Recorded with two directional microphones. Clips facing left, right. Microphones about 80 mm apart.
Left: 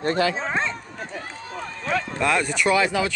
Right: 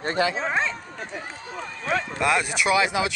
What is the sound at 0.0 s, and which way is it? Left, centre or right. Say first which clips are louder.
Speech: left 2 dB; right.